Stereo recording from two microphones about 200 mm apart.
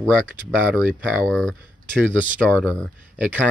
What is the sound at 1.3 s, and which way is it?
Speech, 5° left (ahead or behind).